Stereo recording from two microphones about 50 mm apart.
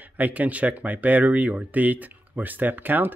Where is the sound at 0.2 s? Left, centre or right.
Right.